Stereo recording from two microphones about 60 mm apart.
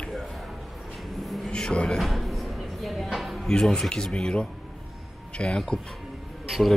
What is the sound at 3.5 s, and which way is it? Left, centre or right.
Speech, centre.